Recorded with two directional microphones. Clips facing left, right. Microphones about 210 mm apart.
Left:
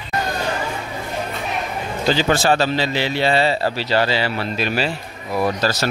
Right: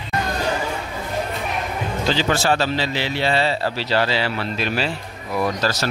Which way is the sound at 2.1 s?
45° left (ahead or behind).